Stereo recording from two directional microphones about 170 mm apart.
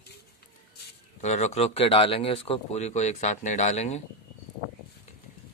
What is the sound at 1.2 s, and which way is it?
Speech, 45° left (ahead or behind).